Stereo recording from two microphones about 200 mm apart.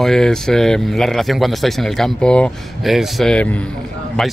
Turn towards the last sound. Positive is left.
turn(degrees=0)  # may be behind; listen again after turning